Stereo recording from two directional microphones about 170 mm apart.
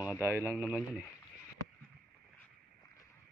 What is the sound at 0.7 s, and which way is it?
Speech, 5° right (ahead or behind).